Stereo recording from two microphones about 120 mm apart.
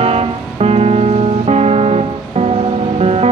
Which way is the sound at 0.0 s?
60° right (ahead or behind).